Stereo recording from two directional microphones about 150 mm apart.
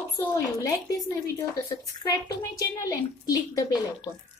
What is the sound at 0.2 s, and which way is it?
Speech, 20° left (ahead or behind).